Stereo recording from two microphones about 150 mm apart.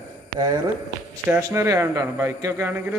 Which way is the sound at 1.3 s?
15° right (ahead or behind).